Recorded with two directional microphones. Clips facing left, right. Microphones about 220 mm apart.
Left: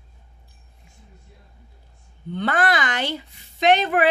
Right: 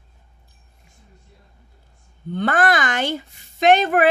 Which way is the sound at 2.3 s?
45° right (ahead or behind).